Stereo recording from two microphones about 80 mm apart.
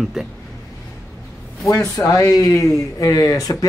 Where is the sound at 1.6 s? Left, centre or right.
Left.